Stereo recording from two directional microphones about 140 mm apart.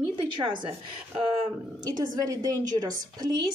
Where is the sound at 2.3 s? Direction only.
30° right (ahead or behind).